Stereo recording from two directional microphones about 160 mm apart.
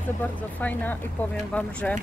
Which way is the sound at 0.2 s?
10° left (ahead or behind).